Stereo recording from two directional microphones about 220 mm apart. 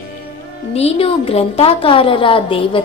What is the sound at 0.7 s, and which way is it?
A woman's voice, 25° left (ahead or behind).